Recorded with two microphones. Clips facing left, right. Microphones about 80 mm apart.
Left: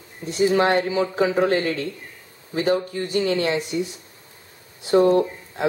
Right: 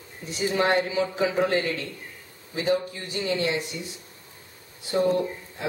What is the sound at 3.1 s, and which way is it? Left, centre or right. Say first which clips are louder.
Speech: left 5 dB; left.